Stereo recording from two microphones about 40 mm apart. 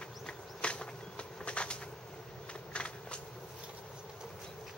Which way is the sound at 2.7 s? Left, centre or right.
Left.